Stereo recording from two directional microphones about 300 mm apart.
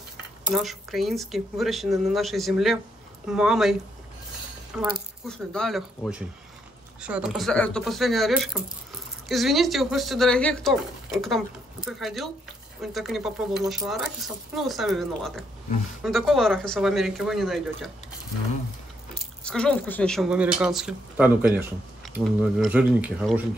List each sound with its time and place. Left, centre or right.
0.5 s speech: centre
4.7 s speech: centre
19.4 s speech: centre